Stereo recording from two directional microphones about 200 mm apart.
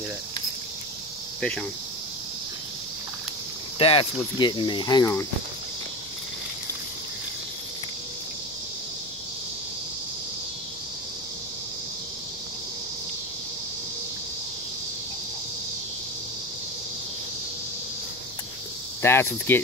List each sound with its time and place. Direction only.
1.4 s speech: 5° left (ahead or behind)
3.7 s speech: 25° left (ahead or behind)
19.0 s speech: 10° left (ahead or behind)